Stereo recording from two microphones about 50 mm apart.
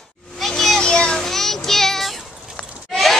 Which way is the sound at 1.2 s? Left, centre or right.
Centre.